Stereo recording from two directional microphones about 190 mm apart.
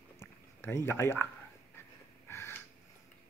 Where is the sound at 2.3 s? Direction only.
15° left (ahead or behind).